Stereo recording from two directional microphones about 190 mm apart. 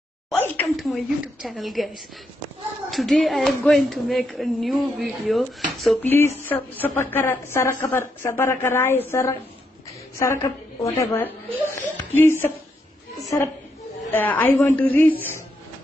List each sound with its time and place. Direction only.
0.3 s a sound: 10° left (ahead or behind)
0.7 s speech: centre (ahead or behind)
2.9 s speech: centre (ahead or behind)
6.0 s speech: 10° left (ahead or behind)
11.8 s a sound: 10° left (ahead or behind)
14.1 s speech: 10° left (ahead or behind)